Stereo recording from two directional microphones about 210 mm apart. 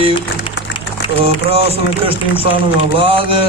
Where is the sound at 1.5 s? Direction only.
30° right (ahead or behind).